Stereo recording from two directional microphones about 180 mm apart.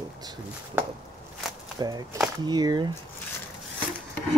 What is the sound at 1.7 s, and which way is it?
Speech, 20° right (ahead or behind).